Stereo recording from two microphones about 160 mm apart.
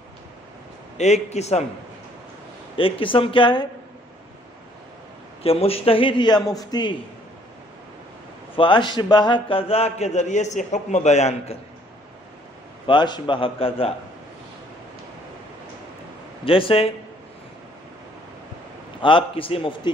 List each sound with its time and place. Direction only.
0.9 s a man's voice: 45° left (ahead or behind)
2.8 s a man's voice: 35° left (ahead or behind)
5.4 s a man's voice: 35° left (ahead or behind)
8.5 s a man's voice: 30° left (ahead or behind)
12.8 s a man's voice: 30° left (ahead or behind)
16.4 s a man's voice: 35° left (ahead or behind)
18.9 s a man's voice: 30° left (ahead or behind)